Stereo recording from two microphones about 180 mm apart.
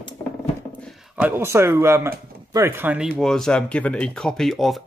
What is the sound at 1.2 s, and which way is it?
Speech, 15° right (ahead or behind).